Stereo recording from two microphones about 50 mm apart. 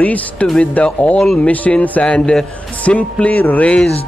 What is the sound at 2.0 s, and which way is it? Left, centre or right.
A man's voice, centre.